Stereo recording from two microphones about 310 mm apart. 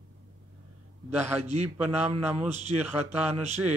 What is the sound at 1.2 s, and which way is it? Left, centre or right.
Speech, right.